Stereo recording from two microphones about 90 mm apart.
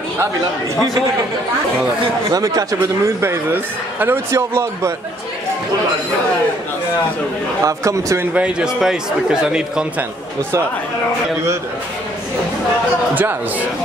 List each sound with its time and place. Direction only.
2.3 s speech: 40° right (ahead or behind)
7.6 s speech: 35° right (ahead or behind)
8.4 s a man's voice: 10° right (ahead or behind)
13.1 s speech: 20° right (ahead or behind)